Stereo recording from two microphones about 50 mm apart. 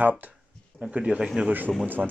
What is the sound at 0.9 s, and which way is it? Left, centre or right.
Speech, right.